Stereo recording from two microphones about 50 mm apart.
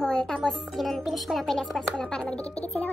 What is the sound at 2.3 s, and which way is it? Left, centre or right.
Speech, left.